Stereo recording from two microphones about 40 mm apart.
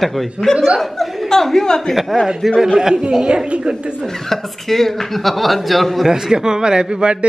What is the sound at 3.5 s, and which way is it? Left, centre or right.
Speech, right.